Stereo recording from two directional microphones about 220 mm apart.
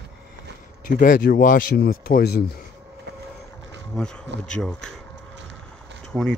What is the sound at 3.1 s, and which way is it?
Vehicle, 50° right (ahead or behind).